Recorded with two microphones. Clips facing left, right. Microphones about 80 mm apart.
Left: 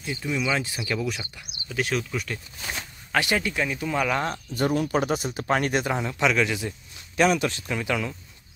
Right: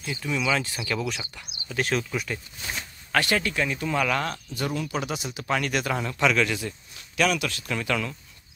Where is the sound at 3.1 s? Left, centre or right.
Centre.